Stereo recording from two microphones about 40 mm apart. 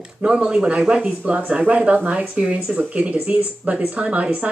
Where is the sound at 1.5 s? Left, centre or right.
Right.